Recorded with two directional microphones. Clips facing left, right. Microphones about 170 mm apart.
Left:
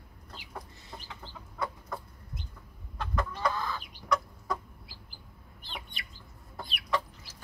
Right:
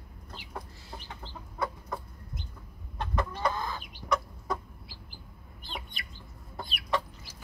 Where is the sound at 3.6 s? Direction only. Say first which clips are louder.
Even; 45° right (ahead or behind).